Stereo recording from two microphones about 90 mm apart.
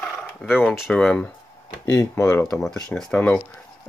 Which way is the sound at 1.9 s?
25° left (ahead or behind).